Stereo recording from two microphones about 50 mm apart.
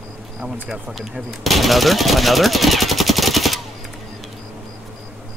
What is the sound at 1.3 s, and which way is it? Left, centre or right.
Speech, centre.